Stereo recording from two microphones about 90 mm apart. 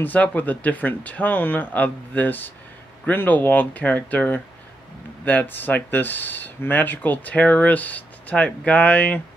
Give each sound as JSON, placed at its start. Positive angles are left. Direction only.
{"t": 0.0, "sound": "speech", "side_deg": 20}